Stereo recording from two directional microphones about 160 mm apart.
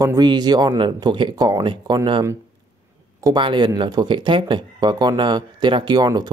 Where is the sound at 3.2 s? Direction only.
30° right (ahead or behind).